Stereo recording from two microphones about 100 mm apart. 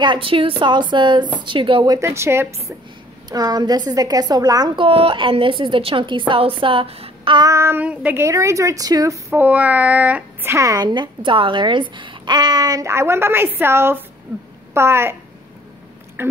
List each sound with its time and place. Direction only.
0.0 s a woman's voice: 60° right (ahead or behind)
1.9 s a woman's voice: 30° right (ahead or behind)
3.3 s a woman's voice: 40° right (ahead or behind)
4.7 s a woman's voice: 65° right (ahead or behind)
7.5 s a woman's voice: 25° right (ahead or behind)
7.8 s child singing: 15° right (ahead or behind)
8.2 s a woman's voice: 30° right (ahead or behind)
9.4 s child singing: 15° right (ahead or behind)
10.4 s a woman's voice: 30° right (ahead or behind)
12.8 s a woman's voice: 25° right (ahead or behind)
16.2 s speech: 25° right (ahead or behind)